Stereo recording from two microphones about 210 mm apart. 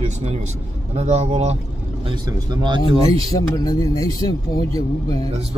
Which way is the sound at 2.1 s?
20° right (ahead or behind).